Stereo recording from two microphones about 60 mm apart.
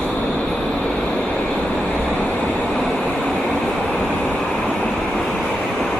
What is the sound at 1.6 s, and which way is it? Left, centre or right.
Vehicle, centre.